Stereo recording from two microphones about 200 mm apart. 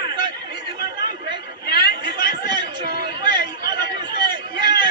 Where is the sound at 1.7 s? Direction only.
20° right (ahead or behind).